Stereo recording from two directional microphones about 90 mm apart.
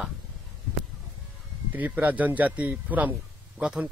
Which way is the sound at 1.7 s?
20° right (ahead or behind).